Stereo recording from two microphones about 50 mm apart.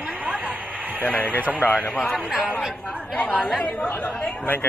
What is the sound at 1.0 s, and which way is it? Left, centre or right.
Speech, left.